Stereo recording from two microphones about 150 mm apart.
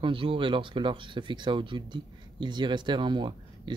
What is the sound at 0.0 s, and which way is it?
Speech, 35° right (ahead or behind).